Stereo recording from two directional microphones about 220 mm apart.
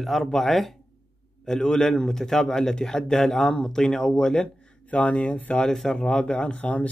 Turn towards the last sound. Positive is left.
turn(degrees=5)  # may be behind; listen again after turning